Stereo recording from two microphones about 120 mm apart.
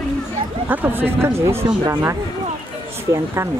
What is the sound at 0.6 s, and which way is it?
Speech, 15° right (ahead or behind).